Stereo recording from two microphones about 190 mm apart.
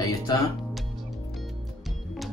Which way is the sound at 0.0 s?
20° left (ahead or behind).